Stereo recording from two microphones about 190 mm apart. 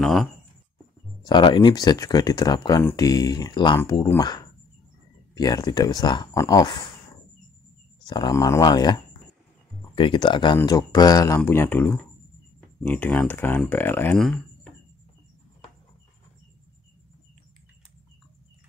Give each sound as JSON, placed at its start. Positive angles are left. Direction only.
{"t": 0.0, "sound": "speech", "side_deg": 0}
{"t": 1.2, "sound": "speech", "side_deg": 25}
{"t": 8.0, "sound": "speech", "side_deg": 20}